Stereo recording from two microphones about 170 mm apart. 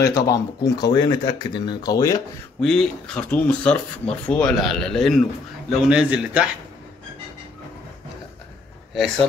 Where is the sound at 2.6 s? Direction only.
5° left (ahead or behind).